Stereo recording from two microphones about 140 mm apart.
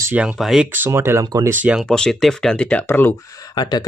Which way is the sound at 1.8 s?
5° left (ahead or behind).